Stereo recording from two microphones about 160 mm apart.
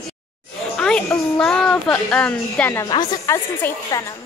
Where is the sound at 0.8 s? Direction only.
5° left (ahead or behind).